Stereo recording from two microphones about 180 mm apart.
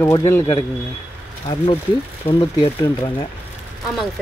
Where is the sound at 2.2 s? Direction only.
30° left (ahead or behind).